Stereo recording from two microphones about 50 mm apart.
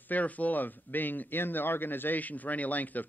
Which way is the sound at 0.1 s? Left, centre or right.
Left.